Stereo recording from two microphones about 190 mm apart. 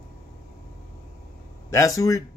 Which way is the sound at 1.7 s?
15° left (ahead or behind).